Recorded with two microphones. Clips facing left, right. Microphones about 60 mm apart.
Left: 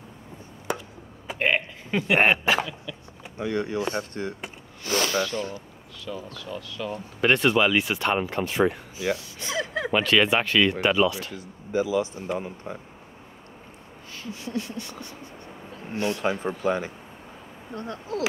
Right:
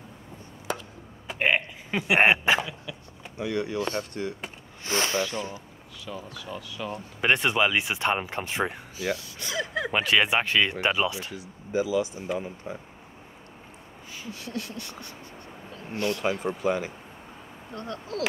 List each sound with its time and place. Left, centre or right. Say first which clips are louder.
0.7 s chop: left 2 dB; centre
1.4 s speech: even; centre
3.3 s speech: left 1 dB; left
4.8 s speech: left 2 dB; right
6.0 s speech: left 2 dB; centre
8.9 s gasp: left 2 dB; left
9.9 s speech: left 2 dB; centre
11.3 s speech: left 1 dB; left
14.3 s a sound: left 4 dB; left
16.3 s speech: left 1 dB; left
17.7 s a sound: left 2 dB; left